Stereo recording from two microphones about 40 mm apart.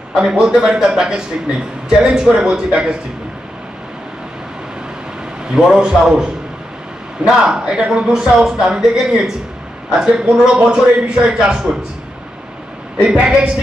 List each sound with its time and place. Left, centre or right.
0.1 s a man's voice: centre
5.5 s a man's voice: centre
13.0 s a man's voice: right